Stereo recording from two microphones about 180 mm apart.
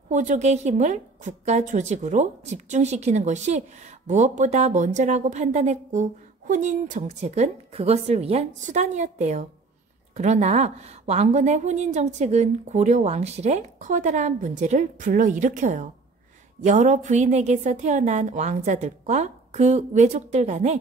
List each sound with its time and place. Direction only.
0.1 s a woman's voice: 45° right (ahead or behind)